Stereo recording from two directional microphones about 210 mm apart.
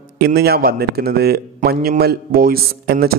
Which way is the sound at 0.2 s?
50° right (ahead or behind).